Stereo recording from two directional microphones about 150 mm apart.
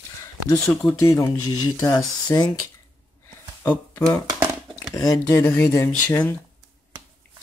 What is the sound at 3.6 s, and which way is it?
Speech, 10° left (ahead or behind).